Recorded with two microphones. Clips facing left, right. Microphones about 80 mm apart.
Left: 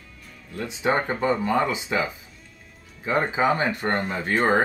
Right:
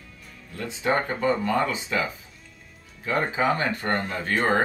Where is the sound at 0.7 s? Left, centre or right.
Centre.